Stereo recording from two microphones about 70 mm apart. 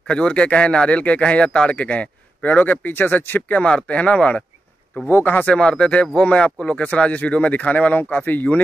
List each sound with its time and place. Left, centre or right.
0.1 s a man's voice: centre
5.0 s speech: left
5.6 s speech: centre